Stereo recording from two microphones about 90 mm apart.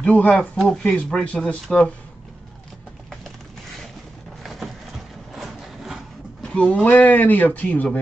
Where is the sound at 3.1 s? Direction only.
Centre (ahead or behind).